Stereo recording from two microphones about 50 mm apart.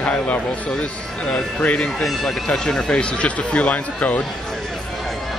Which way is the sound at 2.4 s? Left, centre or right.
Centre.